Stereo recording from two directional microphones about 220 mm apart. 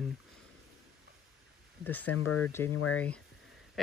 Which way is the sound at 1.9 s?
90° left.